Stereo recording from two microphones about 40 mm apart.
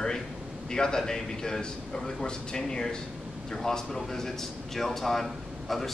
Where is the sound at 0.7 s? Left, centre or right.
Centre.